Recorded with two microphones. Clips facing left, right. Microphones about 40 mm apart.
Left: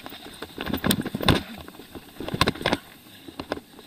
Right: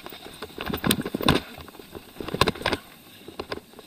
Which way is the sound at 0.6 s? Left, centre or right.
Left.